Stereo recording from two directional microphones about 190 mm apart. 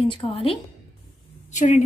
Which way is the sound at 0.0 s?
25° left (ahead or behind).